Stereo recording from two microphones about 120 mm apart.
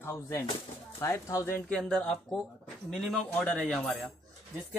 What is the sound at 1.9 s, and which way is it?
Speech, 5° left (ahead or behind).